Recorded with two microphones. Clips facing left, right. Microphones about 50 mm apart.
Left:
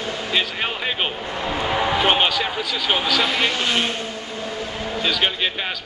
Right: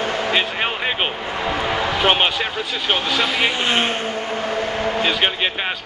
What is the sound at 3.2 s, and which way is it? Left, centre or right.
Speech, centre.